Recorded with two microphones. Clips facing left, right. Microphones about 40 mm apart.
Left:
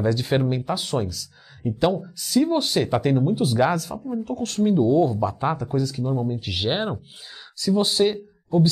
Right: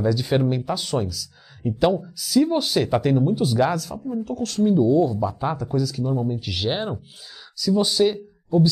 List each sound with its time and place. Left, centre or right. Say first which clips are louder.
0.0 s speech: right 1 dB; centre
1.6 s speech: right 2 dB; centre
2.1 s speech: right 2 dB; centre
2.4 s speech: even; centre; by 4.0 s left
4.1 s speech: right 1 dB; centre
5.8 s speech: right 1 dB; left
6.0 s speech: right 1 dB; centre
6.4 s speech: left 1 dB; centre